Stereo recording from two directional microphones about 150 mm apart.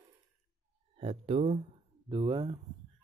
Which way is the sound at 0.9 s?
40° right (ahead or behind).